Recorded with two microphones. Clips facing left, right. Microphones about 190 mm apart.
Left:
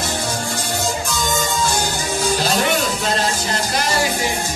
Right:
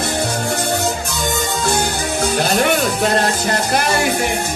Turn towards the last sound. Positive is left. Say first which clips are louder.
# right 3 dB
turn(degrees=-60)  # may be behind; listen again after turning